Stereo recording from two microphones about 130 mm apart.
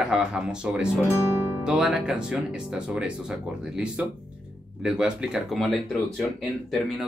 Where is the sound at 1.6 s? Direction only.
5° right (ahead or behind).